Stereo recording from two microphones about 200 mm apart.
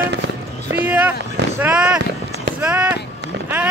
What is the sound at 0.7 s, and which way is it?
Speech, 10° right (ahead or behind).